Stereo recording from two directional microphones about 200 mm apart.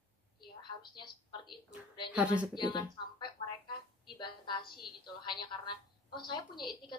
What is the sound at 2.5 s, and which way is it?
Speech, 20° left (ahead or behind).